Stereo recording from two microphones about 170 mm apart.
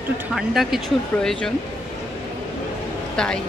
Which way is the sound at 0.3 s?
Centre (ahead or behind).